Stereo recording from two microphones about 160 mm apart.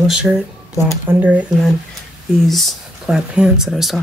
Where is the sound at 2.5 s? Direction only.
Centre (ahead or behind).